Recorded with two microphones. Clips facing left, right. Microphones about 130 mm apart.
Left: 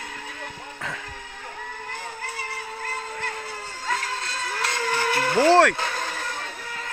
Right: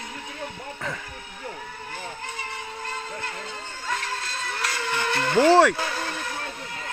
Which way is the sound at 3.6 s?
5° left (ahead or behind).